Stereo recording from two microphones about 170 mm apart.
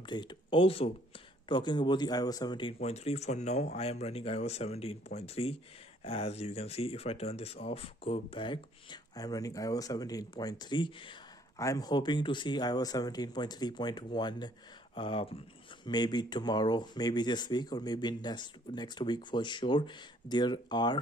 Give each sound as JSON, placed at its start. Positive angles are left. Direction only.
{"t": 0.0, "sound": "speech", "side_deg": 25}